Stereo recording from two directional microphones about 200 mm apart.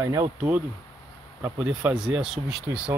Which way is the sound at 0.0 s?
15° right (ahead or behind).